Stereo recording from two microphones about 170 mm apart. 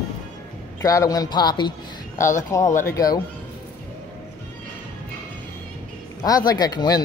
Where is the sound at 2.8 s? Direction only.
20° left (ahead or behind).